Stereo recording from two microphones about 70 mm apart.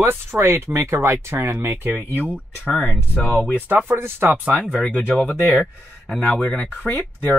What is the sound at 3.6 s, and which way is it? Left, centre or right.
Speech, right.